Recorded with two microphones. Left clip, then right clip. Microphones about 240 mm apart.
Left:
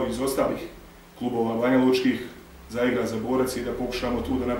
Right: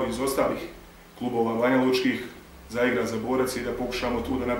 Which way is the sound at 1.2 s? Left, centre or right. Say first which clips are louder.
Even; centre.